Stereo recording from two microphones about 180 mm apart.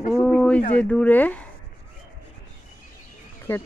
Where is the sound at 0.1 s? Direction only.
5° left (ahead or behind).